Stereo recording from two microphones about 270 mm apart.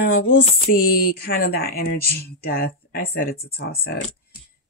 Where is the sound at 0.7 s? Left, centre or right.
Left.